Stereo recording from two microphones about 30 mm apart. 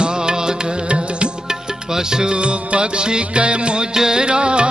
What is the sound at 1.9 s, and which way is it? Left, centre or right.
Music, right.